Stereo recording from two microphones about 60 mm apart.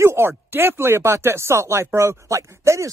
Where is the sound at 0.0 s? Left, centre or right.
Right.